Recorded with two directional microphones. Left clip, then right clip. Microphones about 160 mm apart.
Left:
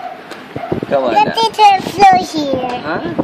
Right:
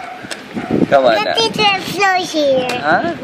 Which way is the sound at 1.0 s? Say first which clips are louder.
Left 1 dB; 55° left (ahead or behind).